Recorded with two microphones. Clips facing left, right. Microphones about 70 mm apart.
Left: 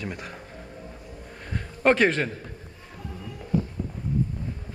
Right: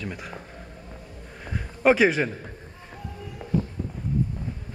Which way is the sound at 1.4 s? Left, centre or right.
Centre.